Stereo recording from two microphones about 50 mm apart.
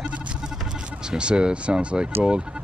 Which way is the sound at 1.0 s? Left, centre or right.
Centre.